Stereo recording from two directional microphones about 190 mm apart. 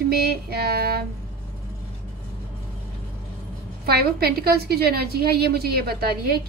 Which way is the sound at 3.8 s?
55° right (ahead or behind).